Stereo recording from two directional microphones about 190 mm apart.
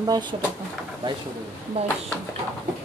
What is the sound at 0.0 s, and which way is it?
Speech, 20° right (ahead or behind).